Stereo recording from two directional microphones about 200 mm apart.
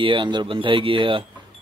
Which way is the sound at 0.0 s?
25° right (ahead or behind).